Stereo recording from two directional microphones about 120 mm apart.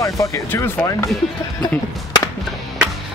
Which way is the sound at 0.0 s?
25° left (ahead or behind).